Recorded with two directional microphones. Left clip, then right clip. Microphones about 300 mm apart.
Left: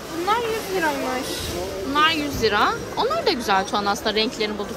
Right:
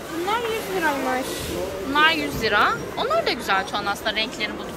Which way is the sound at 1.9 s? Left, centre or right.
Centre.